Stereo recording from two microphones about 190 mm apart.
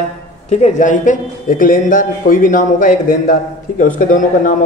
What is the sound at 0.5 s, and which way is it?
A man's voice, 40° left (ahead or behind).